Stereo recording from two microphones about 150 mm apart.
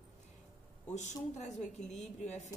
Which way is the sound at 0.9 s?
50° left (ahead or behind).